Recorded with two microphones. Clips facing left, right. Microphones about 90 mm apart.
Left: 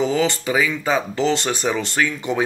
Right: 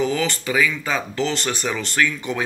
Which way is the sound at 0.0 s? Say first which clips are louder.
Left 3 dB; 20° left (ahead or behind).